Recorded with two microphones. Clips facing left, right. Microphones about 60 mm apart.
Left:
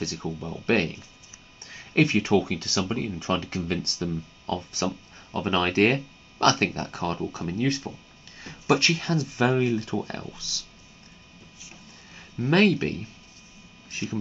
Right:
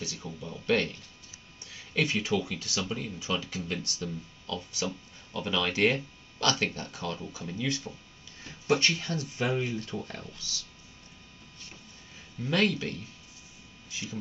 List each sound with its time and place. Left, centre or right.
0.0 s speech: left
2.8 s speech: left
12.4 s speech: left
13.8 s a sound: left